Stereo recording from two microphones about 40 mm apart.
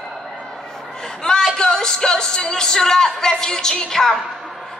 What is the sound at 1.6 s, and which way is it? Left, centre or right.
A woman's voice, centre.